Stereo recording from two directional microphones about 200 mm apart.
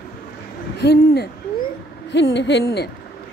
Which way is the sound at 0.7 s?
55° left (ahead or behind).